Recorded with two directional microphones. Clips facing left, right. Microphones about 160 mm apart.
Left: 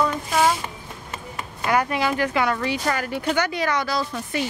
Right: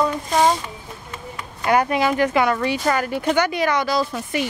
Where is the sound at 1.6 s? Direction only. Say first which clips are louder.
Right 3 dB; 25° right (ahead or behind).